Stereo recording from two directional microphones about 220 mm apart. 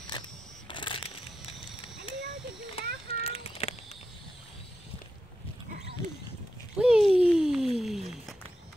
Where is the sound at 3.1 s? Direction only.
25° left (ahead or behind).